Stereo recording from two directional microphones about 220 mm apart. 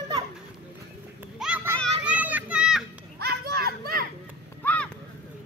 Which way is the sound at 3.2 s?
45° right (ahead or behind).